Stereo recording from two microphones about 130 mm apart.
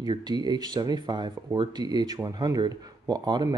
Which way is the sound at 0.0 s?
35° right (ahead or behind).